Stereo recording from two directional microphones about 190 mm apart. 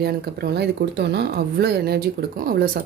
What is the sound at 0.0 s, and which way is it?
Speech, 55° right (ahead or behind).